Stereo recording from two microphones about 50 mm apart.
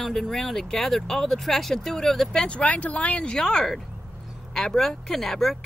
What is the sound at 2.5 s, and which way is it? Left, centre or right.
Speech, left.